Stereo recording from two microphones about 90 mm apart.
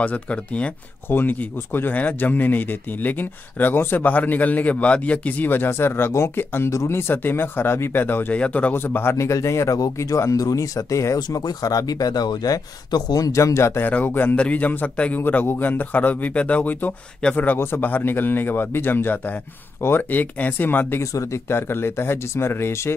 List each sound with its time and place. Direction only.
0.0 s a man's voice: 15° left (ahead or behind)
9.1 s speech: 35° left (ahead or behind)
13.8 s a man's voice: 20° left (ahead or behind)
21.0 s a man's voice: 35° left (ahead or behind)